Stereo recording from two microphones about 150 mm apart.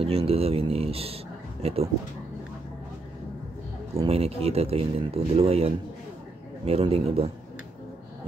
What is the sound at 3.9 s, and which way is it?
A man's voice, 40° right (ahead or behind).